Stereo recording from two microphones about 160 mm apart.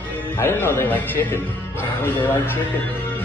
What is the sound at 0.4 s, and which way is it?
Speech, 15° left (ahead or behind).